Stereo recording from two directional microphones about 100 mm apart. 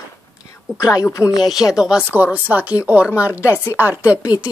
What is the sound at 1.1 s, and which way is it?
Speech, 30° left (ahead or behind).